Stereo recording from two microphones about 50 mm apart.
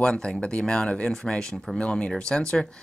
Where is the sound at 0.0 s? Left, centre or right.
Centre.